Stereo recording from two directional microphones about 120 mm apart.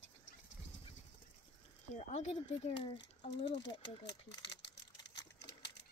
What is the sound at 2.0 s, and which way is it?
Speech, 70° left (ahead or behind).